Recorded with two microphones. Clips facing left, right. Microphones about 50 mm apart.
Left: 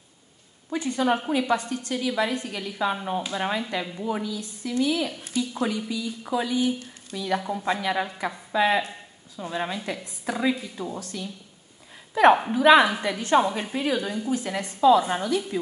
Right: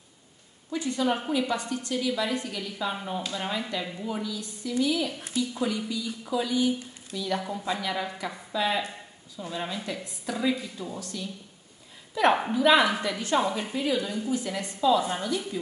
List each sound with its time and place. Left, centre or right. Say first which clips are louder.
0.7 s a woman's voice: left 3 dB; left
7.6 s a woman's voice: left 4 dB; left